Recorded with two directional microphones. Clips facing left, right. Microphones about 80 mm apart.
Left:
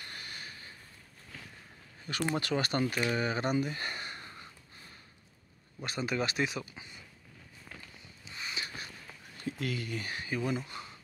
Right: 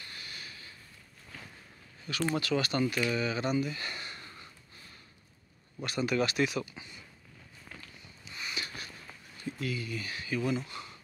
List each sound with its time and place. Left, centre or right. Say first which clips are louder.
0.0 s a sound: left 1 dB; left
2.1 s speech: right 1 dB; left
5.9 s speech: right 3 dB; left
8.3 s a sound: right 1 dB; left
9.4 s speech: even; left
9.9 s speech: right 1 dB; left